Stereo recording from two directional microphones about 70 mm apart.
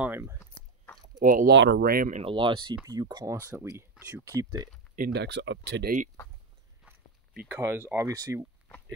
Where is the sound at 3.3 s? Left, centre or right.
Right.